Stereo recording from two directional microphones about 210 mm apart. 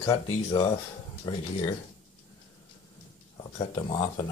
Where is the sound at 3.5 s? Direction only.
25° left (ahead or behind).